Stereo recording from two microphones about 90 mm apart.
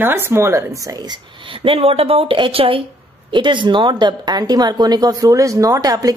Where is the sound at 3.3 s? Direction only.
65° right (ahead or behind).